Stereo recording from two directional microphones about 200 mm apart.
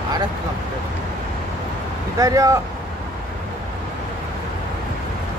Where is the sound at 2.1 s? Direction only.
20° right (ahead or behind).